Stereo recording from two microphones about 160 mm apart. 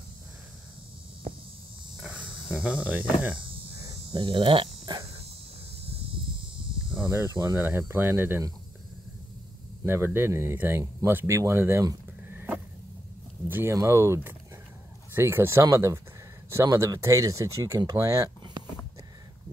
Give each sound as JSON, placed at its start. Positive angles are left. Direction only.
{"t": 2.0, "sound": "cricket", "side_deg": -5}
{"t": 3.3, "sound": "insect", "side_deg": -35}
{"t": 6.3, "sound": "insect", "side_deg": -30}
{"t": 7.5, "sound": "speech", "side_deg": -15}
{"t": 9.8, "sound": "speech", "side_deg": -15}